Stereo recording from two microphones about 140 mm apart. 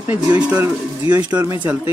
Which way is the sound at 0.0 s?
10° right (ahead or behind).